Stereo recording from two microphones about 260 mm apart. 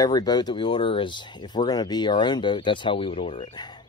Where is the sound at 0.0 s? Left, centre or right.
Centre.